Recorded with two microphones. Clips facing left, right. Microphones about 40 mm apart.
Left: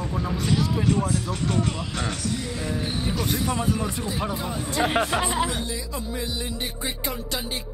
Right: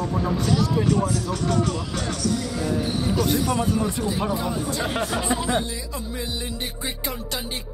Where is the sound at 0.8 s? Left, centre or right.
Left.